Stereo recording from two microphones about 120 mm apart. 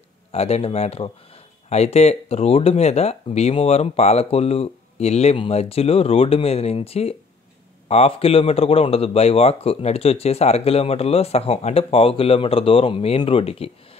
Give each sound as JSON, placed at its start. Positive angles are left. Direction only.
{"t": 0.3, "sound": "speech", "side_deg": 60}